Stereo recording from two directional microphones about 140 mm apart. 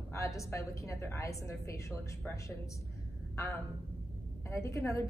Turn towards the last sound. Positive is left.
turn(degrees=20)  # may be behind; listen again after turning